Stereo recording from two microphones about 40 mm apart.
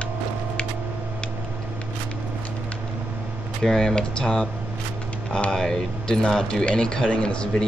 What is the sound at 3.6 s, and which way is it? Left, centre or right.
Speech, centre.